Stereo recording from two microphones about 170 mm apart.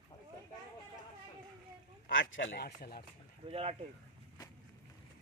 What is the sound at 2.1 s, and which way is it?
Speech, 80° left.